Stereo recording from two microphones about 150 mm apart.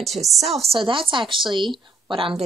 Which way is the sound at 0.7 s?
35° right (ahead or behind).